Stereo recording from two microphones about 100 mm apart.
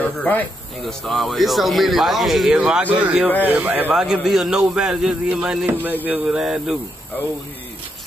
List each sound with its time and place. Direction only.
0.0 s speech: 15° left (ahead or behind)
0.8 s speech: centre (ahead or behind); by 3.9 s 15° right (ahead or behind)
3.9 s speech: 5° right (ahead or behind)